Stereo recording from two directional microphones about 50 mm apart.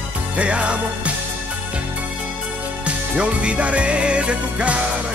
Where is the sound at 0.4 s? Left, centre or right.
Right.